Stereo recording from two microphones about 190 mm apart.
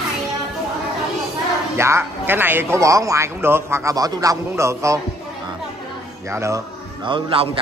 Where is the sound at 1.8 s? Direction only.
15° right (ahead or behind).